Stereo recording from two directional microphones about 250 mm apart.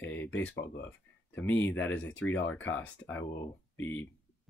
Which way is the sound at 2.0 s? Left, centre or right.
Left.